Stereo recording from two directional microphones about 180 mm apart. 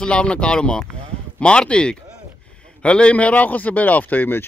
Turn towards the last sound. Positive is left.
turn(degrees=10)  # may be behind; listen again after turning